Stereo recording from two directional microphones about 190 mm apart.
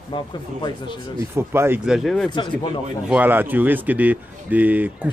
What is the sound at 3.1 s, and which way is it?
Speech, 10° right (ahead or behind).